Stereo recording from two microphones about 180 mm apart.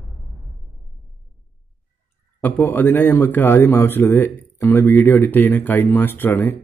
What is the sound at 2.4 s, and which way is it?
A man's voice, 10° left (ahead or behind).